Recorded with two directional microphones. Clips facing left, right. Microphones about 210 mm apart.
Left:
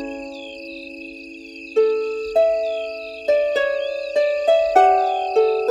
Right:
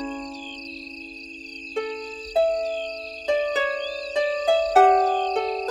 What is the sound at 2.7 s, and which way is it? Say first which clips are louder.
Music: left 5 dB; 40° left (ahead or behind).